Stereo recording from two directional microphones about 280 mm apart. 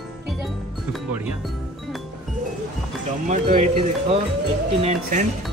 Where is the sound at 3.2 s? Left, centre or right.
Right.